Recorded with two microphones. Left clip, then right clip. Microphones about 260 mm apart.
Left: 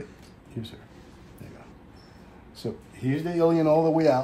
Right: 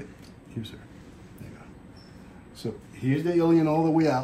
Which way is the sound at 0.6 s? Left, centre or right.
Left.